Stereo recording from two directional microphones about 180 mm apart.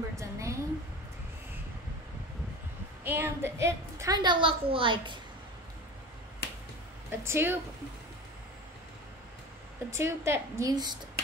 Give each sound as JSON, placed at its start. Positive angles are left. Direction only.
{"t": 0.1, "sound": "a sound", "side_deg": -15}
{"t": 3.0, "sound": "a woman's voice", "side_deg": -10}
{"t": 6.4, "sound": "finger snapping", "side_deg": 65}
{"t": 7.1, "sound": "a woman's voice", "side_deg": -15}
{"t": 9.8, "sound": "a woman's voice", "side_deg": -15}